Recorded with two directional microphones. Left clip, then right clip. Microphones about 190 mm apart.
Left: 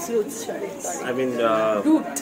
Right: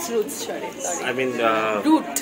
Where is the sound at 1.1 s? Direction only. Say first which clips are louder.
Even; 15° left (ahead or behind).